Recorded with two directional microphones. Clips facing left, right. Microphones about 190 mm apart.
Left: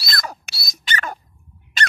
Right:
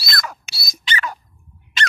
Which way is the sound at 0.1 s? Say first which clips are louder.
Even; 35° left (ahead or behind).